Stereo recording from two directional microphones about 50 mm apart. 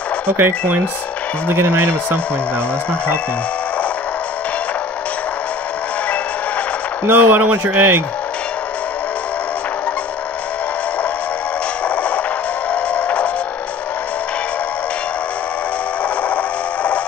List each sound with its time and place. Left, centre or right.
0.4 s speech: right
7.1 s speech: right
11.8 s music: left
16.0 s a sound: left